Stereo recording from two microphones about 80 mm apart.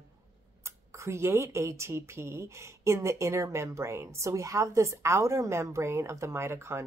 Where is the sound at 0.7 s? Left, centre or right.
Right.